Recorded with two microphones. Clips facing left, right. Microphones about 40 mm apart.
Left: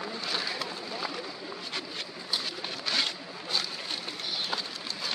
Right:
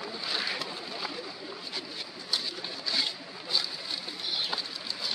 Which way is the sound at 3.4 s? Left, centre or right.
Left.